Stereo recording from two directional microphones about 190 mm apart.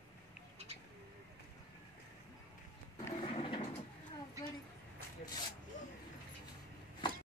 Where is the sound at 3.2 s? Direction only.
30° left (ahead or behind).